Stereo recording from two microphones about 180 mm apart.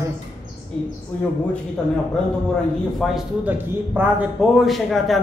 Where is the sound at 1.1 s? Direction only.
10° left (ahead or behind).